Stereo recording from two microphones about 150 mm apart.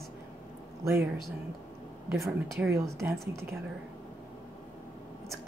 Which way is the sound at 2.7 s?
20° right (ahead or behind).